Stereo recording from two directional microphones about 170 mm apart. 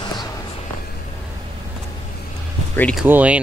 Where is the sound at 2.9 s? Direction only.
5° right (ahead or behind).